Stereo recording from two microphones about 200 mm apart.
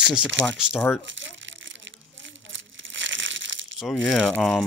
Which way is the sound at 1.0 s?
65° right (ahead or behind).